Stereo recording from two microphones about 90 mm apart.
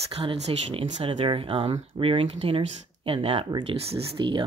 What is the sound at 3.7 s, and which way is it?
Speech, 75° right (ahead or behind).